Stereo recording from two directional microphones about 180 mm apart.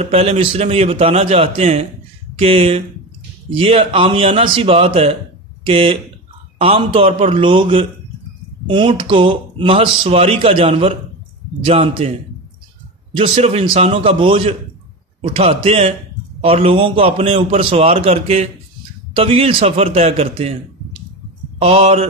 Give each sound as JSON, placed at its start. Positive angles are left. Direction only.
{"t": 0.0, "sound": "a man's voice", "side_deg": -35}
{"t": 13.2, "sound": "a man's voice", "side_deg": -35}
{"t": 21.5, "sound": "a man's voice", "side_deg": -35}